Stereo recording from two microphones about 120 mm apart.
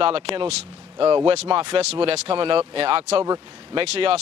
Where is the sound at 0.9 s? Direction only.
45° right (ahead or behind).